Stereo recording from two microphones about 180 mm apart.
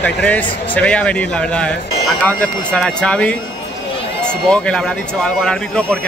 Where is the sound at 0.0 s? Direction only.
5° left (ahead or behind).